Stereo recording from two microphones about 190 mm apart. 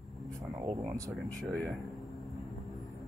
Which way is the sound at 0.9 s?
15° right (ahead or behind).